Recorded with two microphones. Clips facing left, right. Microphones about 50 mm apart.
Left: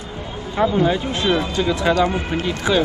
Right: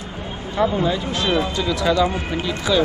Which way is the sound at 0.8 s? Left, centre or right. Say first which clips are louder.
Left 2 dB; left.